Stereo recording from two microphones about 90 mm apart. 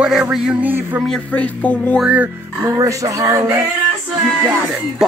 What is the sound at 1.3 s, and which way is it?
Speech, 15° left (ahead or behind).